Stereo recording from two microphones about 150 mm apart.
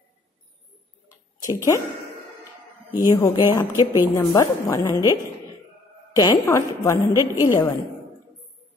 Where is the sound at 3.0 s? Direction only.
25° left (ahead or behind).